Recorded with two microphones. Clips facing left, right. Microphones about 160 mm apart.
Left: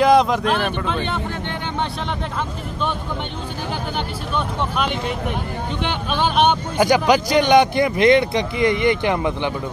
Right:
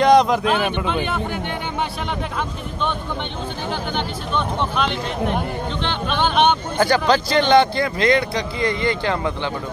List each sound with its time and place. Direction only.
0.0 s speech: 5° left (ahead or behind)
5.8 s speech: 10° left (ahead or behind)